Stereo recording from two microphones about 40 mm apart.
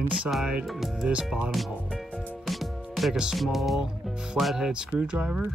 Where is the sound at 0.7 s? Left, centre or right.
Centre.